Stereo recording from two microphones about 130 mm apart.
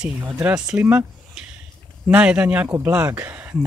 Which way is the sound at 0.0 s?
10° right (ahead or behind).